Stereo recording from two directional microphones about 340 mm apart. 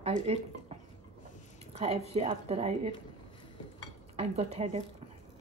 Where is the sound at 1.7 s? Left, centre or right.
Centre.